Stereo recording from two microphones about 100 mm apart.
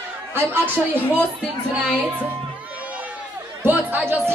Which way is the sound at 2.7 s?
15° right (ahead or behind).